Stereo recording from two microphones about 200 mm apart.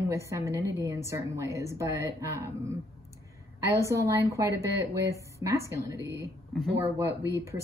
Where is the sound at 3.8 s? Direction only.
15° right (ahead or behind).